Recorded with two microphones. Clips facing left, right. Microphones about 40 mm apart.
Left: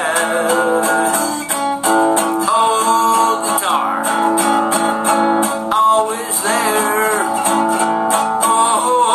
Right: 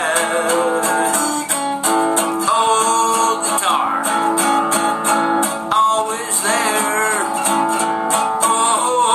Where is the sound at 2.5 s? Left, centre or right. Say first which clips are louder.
Left 1 dB; centre.